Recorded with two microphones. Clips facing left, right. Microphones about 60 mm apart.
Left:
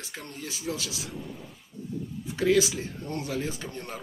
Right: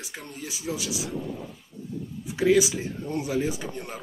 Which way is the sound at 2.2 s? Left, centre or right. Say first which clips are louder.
Right 3 dB; centre.